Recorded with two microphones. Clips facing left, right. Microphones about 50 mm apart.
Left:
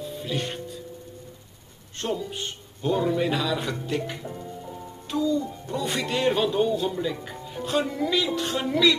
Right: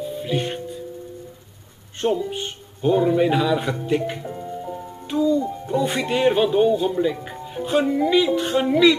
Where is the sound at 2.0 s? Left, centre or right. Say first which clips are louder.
Right 7 dB; centre.